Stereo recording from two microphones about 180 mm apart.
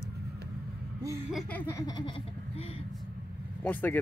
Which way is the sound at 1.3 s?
5° left (ahead or behind).